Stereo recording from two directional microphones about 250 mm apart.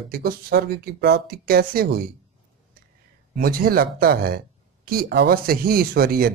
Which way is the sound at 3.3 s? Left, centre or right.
Right.